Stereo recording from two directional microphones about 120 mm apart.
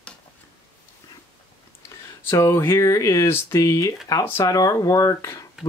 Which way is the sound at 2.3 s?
20° left (ahead or behind).